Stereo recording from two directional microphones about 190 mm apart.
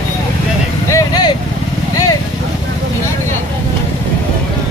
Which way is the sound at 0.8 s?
20° left (ahead or behind).